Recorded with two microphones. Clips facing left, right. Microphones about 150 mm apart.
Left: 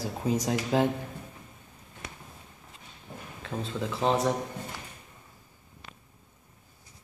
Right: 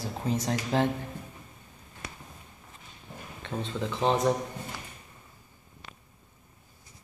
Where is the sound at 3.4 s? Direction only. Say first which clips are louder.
Even; 5° left (ahead or behind).